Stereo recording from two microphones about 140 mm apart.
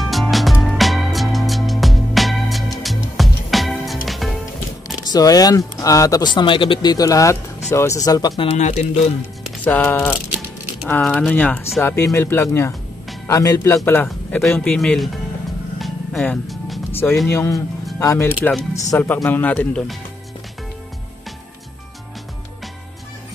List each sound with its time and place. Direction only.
0.0 s music: centre (ahead or behind)
5.1 s speech: 25° left (ahead or behind)
8.4 s speech: 50° left (ahead or behind)
9.7 s speech: 10° left (ahead or behind)
14.0 s speech: centre (ahead or behind)
15.8 s music: centre (ahead or behind)
16.9 s speech: 15° left (ahead or behind)